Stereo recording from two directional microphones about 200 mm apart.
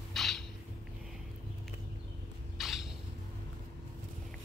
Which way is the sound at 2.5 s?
Centre (ahead or behind).